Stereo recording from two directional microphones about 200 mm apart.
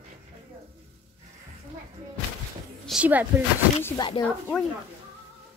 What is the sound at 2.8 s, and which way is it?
Speech, 5° right (ahead or behind).